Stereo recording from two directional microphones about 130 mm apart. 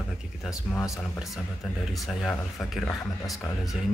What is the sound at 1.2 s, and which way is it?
Speech, centre (ahead or behind).